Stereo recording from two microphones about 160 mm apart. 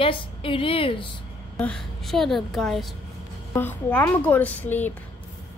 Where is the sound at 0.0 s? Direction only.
35° left (ahead or behind).